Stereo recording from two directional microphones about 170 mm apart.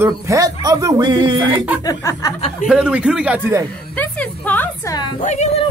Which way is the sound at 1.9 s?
20° left (ahead or behind).